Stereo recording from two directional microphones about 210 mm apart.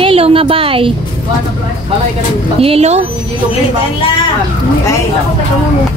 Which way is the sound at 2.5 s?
30° right (ahead or behind).